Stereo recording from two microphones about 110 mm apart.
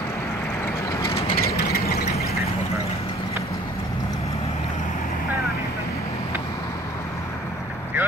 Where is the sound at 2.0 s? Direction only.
90° left.